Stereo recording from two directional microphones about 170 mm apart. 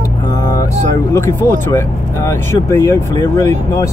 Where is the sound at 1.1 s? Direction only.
15° left (ahead or behind).